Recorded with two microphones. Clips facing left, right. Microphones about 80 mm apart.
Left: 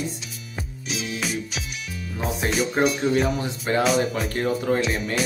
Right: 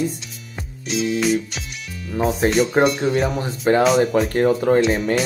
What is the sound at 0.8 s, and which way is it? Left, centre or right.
Music, centre.